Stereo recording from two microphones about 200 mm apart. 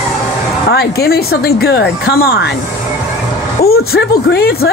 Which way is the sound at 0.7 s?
50° left (ahead or behind).